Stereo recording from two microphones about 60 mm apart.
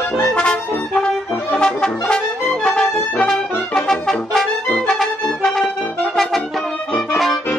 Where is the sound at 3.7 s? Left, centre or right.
Centre.